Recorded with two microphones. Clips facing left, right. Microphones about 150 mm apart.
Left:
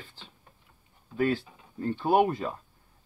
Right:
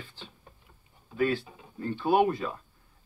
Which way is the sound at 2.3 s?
25° left (ahead or behind).